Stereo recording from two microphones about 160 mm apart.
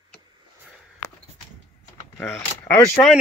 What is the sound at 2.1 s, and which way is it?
Mechanisms, 10° left (ahead or behind).